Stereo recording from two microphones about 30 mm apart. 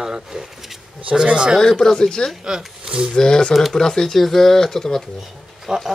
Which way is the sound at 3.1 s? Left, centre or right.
Left.